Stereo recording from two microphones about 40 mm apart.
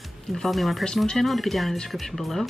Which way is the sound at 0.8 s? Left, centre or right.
Centre.